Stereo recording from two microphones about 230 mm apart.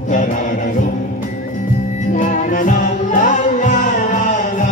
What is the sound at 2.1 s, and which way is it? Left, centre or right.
Music, left.